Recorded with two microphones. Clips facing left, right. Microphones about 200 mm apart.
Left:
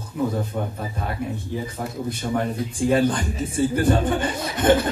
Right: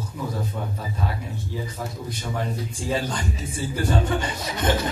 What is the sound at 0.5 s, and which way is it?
Speech, 45° left (ahead or behind).